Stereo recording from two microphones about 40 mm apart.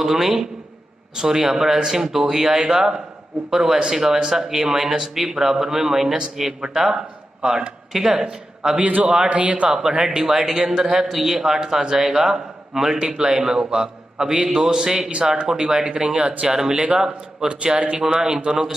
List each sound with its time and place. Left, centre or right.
0.0 s a man's voice: centre
8.7 s a man's voice: right
10.0 s a man's voice: centre
16.4 s a man's voice: centre
17.5 s a man's voice: right